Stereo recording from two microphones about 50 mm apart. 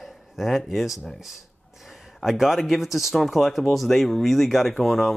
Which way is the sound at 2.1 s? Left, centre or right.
Centre.